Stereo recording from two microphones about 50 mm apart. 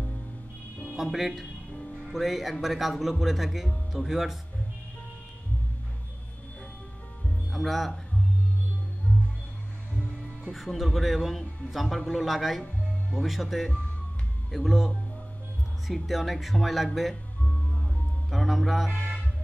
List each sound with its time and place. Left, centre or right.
0.9 s speech: centre
7.5 s speech: centre
9.1 s music: left
10.5 s speech: centre
18.3 s speech: centre